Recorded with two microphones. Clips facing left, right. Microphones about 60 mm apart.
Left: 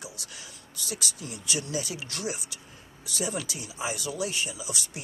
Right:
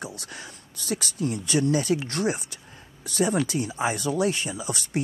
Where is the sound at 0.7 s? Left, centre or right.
Right.